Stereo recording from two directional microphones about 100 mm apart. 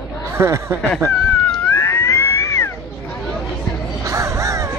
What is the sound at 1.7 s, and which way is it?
Cat, 25° left (ahead or behind).